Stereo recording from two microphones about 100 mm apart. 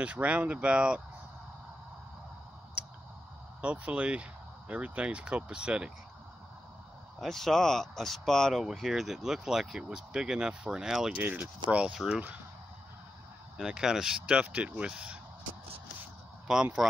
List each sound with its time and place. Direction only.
0.0 s speech: 15° right (ahead or behind)
3.6 s speech: 15° right (ahead or behind)
7.2 s speech: 5° left (ahead or behind)
11.1 s speech: 20° right (ahead or behind)
13.6 s speech: 5° right (ahead or behind)
16.5 s speech: 5° right (ahead or behind)